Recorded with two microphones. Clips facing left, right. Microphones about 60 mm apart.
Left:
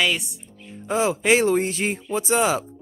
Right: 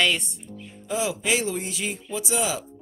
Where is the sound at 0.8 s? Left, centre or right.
Left.